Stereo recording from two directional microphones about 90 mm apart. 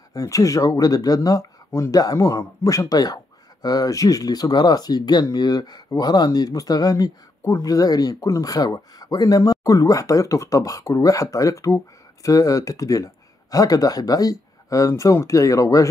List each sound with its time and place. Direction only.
0.1 s speech: 40° left (ahead or behind)